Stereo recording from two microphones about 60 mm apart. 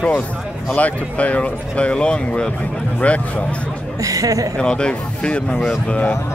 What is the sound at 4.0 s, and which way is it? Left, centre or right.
Speech, right.